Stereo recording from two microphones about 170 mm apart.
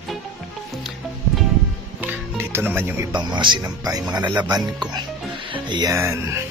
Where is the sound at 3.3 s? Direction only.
25° right (ahead or behind).